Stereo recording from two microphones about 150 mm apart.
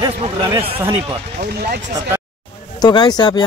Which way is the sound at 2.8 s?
30° left (ahead or behind).